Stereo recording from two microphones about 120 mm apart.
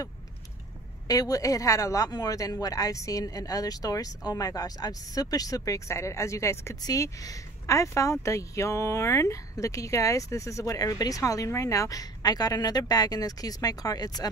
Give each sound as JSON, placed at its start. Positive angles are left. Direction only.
{"t": 1.0, "sound": "a man's voice", "side_deg": 30}